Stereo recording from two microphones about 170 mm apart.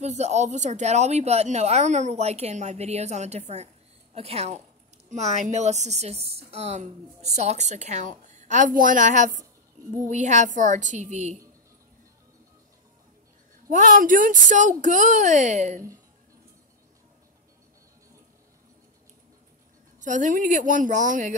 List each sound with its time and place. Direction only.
0.0 s a woman's voice: 40° right (ahead or behind)
13.7 s a woman's voice: 50° right (ahead or behind)
20.0 s a woman's voice: 45° right (ahead or behind)